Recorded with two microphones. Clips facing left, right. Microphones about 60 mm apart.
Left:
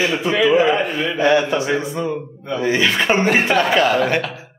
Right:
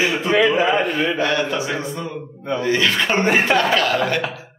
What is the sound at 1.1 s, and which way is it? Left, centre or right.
Speech, left.